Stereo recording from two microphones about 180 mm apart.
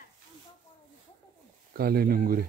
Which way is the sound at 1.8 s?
55° right (ahead or behind).